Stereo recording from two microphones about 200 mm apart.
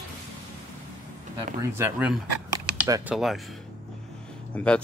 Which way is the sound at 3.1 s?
Centre (ahead or behind).